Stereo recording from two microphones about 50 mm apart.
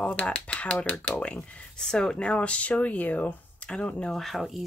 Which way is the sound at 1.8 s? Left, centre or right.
Centre.